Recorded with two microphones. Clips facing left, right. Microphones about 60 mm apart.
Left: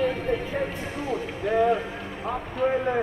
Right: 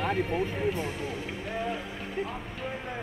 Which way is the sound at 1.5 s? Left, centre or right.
Left.